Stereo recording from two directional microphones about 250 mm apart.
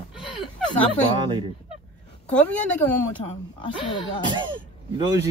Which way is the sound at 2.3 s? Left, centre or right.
Centre.